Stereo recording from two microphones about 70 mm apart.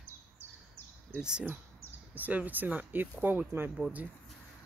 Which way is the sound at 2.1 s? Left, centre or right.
Right.